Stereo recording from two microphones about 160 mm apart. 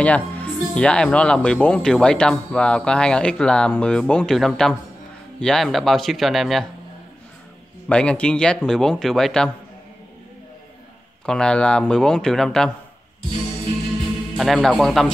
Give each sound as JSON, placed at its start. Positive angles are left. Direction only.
{"t": 0.0, "sound": "speech", "side_deg": 10}
{"t": 7.9, "sound": "speech", "side_deg": 5}
{"t": 11.2, "sound": "speech", "side_deg": 5}
{"t": 14.3, "sound": "speech", "side_deg": 0}